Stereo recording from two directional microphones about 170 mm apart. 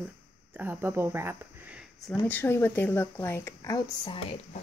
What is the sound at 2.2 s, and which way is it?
Speech, 10° left (ahead or behind).